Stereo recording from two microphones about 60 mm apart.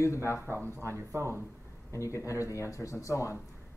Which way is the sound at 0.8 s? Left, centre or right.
Right.